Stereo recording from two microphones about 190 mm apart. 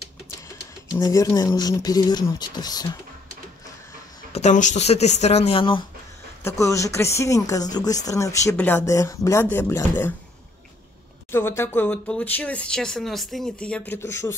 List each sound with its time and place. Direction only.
0.9 s speech: 20° left (ahead or behind)
4.3 s speech: 35° left (ahead or behind)
6.4 s speech: 15° left (ahead or behind)
11.3 s speech: 10° left (ahead or behind)